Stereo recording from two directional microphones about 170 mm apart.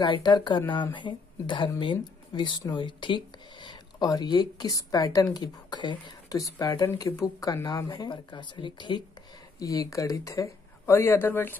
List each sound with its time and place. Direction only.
0.0 s speech: 25° left (ahead or behind)